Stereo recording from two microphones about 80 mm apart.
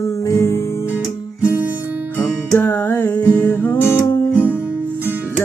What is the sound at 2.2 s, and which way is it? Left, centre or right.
Music, left.